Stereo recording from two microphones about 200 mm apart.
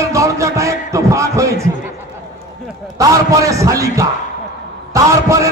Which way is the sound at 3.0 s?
15° right (ahead or behind).